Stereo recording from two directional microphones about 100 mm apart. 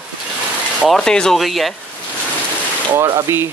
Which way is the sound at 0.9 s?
5° left (ahead or behind).